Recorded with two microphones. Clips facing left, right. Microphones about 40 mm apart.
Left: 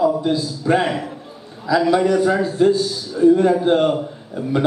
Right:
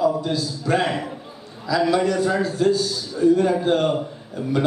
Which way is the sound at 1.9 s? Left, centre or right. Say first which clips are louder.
Left 5 dB; centre.